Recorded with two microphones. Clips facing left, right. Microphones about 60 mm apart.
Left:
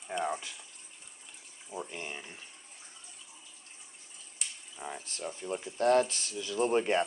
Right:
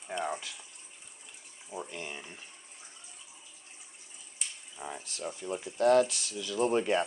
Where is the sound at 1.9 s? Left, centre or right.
Centre.